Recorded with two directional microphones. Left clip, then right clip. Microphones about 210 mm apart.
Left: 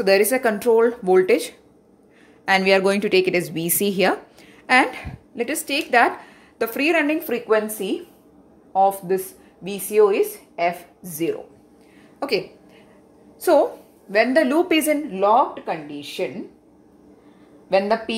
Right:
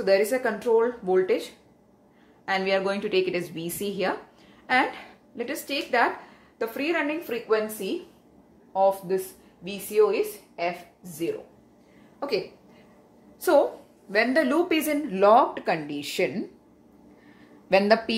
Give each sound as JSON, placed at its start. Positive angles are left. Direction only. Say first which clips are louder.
{"t": 0.0, "sound": "a woman's voice", "louder": "left 5 dB", "side_deg": 40}
{"t": 2.4, "sound": "a woman's voice", "louder": "left 8 dB", "side_deg": 40}
{"t": 8.7, "sound": "a woman's voice", "louder": "left 4 dB", "side_deg": 35}
{"t": 13.4, "sound": "a woman's voice", "louder": "left 4 dB", "side_deg": 15}
{"t": 15.0, "sound": "speech", "louder": "right 2 dB", "side_deg": -15}
{"t": 17.6, "sound": "speech", "louder": "left 1 dB", "side_deg": -15}